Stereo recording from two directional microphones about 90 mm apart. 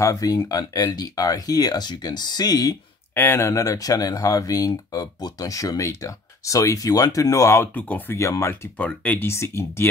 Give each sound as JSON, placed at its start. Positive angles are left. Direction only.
{"t": 0.0, "sound": "speech", "side_deg": 40}
{"t": 3.2, "sound": "speech", "side_deg": 30}
{"t": 7.7, "sound": "speech", "side_deg": 15}
{"t": 8.2, "sound": "speech", "side_deg": 35}
{"t": 8.7, "sound": "speech", "side_deg": 15}
{"t": 9.3, "sound": "speech", "side_deg": 30}